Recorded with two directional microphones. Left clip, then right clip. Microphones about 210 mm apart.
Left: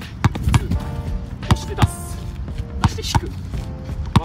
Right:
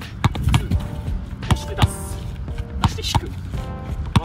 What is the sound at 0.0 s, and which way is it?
Music, centre (ahead or behind).